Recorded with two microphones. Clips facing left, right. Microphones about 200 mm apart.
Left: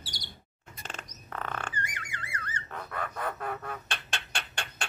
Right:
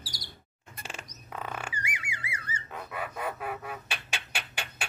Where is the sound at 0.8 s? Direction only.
10° right (ahead or behind).